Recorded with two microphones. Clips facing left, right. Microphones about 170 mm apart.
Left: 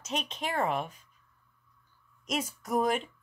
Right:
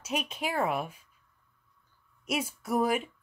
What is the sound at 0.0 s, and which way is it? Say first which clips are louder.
Speech: right 2 dB; 10° right (ahead or behind).